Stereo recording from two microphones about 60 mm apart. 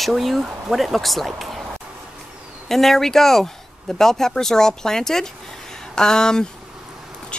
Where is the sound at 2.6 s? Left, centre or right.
Centre.